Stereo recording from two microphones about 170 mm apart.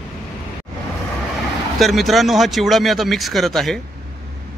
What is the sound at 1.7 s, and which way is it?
Speech, centre (ahead or behind).